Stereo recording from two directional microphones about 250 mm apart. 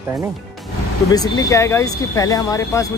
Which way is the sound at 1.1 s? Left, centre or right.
Centre.